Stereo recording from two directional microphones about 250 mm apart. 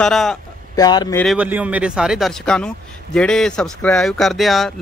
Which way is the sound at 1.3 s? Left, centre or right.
Centre.